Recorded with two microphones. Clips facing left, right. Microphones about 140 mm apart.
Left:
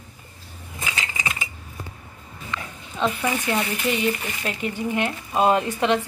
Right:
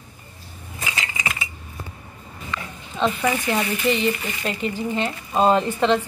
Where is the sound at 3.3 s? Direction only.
5° left (ahead or behind).